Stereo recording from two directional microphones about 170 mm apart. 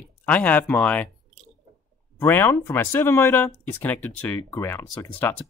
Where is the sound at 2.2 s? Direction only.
10° left (ahead or behind).